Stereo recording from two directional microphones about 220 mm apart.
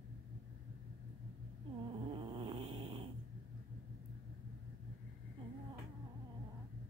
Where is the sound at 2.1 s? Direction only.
25° right (ahead or behind).